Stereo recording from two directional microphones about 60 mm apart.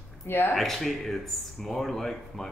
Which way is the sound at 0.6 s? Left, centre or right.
Centre.